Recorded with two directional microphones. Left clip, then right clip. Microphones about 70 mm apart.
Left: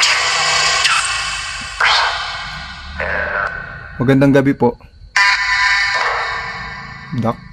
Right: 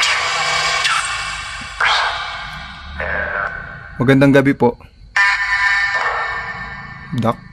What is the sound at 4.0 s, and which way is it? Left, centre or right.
Speech, centre.